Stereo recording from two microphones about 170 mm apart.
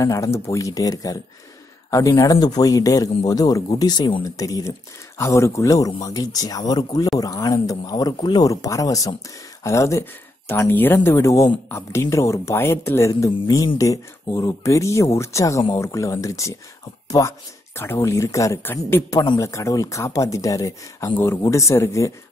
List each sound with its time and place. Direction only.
0.0 s speech: 20° left (ahead or behind)